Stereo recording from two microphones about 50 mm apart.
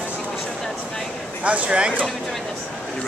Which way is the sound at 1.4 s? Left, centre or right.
Right.